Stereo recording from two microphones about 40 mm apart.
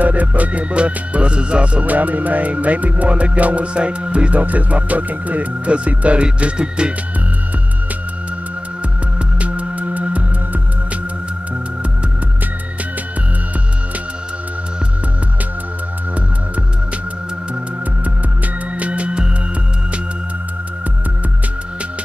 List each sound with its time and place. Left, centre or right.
0.0 s music: right
6.4 s speech: right
9.4 s music: right
18.8 s music: right